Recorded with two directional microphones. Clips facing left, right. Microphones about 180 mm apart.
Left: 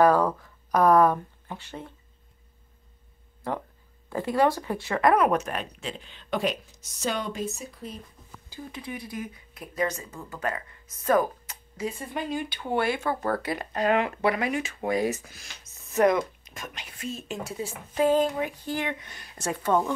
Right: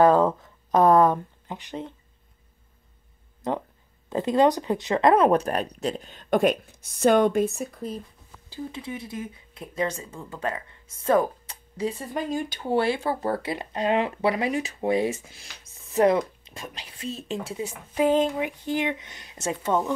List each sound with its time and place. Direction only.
0.0 s speech: 25° right (ahead or behind)
3.4 s speech: 20° right (ahead or behind); by 7.7 s 55° right (ahead or behind)
8.5 s speech: 25° right (ahead or behind)